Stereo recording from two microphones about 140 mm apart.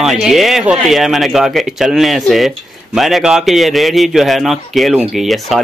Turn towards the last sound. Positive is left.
turn(degrees=0)  # may be behind; listen again after turning